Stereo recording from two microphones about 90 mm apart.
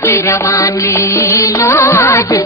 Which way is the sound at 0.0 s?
30° left (ahead or behind).